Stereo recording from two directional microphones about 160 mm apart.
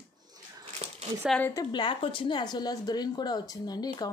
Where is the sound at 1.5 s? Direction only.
25° left (ahead or behind).